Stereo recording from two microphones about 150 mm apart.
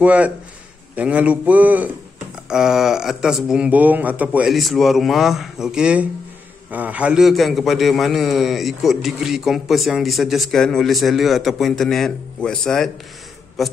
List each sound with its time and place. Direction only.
0.0 s a man's voice: 10° right (ahead or behind)